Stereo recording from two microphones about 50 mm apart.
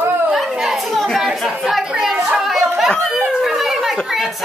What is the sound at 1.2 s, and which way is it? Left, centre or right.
A child's voice, centre.